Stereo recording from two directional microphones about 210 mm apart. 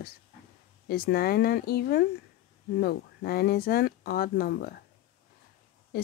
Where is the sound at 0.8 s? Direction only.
45° left (ahead or behind).